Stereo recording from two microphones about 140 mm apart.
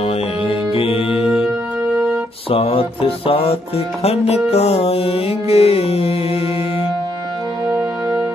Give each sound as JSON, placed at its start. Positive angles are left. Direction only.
{"t": 0.0, "sound": "mantra", "side_deg": 40}
{"t": 1.2, "sound": "music", "side_deg": -5}
{"t": 2.5, "sound": "music", "side_deg": 40}
{"t": 7.6, "sound": "music", "side_deg": -30}